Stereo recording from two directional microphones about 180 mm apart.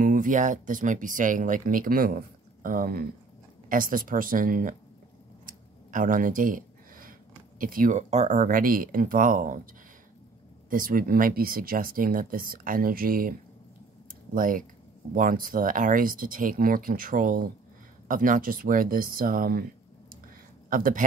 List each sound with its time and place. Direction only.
0.0 s speech: 45° right (ahead or behind)
10.7 s speech: 50° right (ahead or behind)
14.3 s speech: 50° right (ahead or behind)
20.7 s speech: 50° right (ahead or behind)